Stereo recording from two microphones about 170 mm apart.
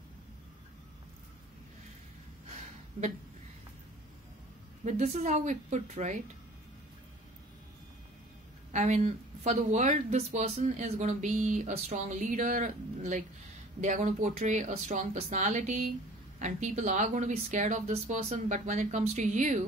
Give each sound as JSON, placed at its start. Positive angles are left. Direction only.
{"t": 4.8, "sound": "speech", "side_deg": -45}
{"t": 8.7, "sound": "speech", "side_deg": -45}